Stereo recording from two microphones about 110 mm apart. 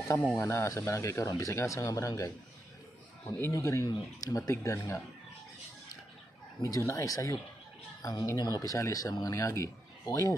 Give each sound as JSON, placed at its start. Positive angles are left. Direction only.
{"t": 0.3, "sound": "speech", "side_deg": 25}
{"t": 3.3, "sound": "speech", "side_deg": 25}
{"t": 6.6, "sound": "speech", "side_deg": 25}